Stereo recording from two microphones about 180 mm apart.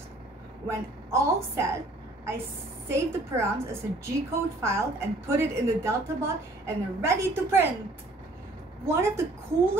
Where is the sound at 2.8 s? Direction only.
15° right (ahead or behind).